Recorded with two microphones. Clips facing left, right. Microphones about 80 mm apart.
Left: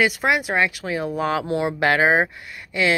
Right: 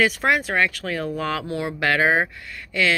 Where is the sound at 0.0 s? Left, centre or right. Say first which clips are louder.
Even; centre.